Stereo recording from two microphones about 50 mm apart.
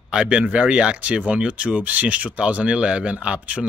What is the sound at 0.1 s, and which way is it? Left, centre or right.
Speech, centre.